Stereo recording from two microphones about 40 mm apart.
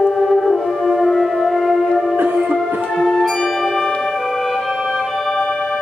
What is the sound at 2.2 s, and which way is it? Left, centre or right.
Music, right.